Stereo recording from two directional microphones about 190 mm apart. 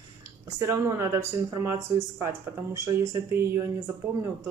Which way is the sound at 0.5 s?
15° right (ahead or behind).